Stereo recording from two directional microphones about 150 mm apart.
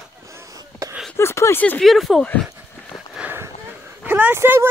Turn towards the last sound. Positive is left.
turn(degrees=-15)  # may be behind; listen again after turning